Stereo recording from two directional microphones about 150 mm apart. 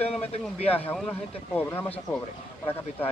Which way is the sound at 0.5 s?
40° left (ahead or behind).